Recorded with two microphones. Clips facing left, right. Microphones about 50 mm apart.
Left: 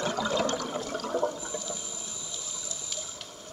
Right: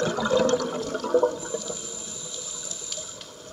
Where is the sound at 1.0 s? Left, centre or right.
Right.